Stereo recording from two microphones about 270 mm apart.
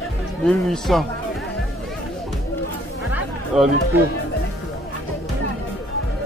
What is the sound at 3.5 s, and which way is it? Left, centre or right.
Speech, centre.